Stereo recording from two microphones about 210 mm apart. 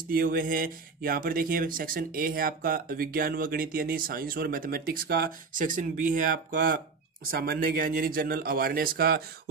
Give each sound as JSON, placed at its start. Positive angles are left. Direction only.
{"t": 0.1, "sound": "speech", "side_deg": -45}